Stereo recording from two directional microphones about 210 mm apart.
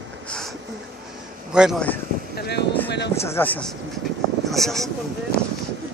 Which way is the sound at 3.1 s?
10° left (ahead or behind).